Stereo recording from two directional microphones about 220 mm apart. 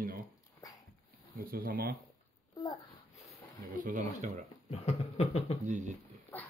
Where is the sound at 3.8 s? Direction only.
35° right (ahead or behind).